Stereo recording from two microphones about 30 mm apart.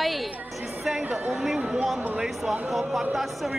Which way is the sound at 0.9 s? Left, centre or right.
Centre.